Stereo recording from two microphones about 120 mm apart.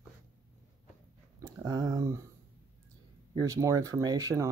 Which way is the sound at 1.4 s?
30° right (ahead or behind).